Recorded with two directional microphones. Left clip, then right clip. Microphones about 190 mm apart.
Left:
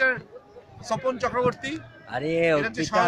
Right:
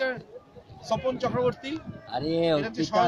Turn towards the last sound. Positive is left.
turn(degrees=-5)  # may be behind; listen again after turning